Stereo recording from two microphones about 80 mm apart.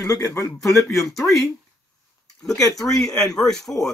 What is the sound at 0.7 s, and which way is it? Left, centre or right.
Speech, centre.